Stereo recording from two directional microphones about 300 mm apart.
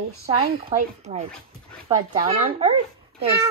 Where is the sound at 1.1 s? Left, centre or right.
Right.